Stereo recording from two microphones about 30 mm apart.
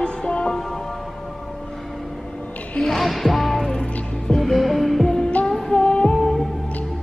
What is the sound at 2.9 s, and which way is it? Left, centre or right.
Music, centre.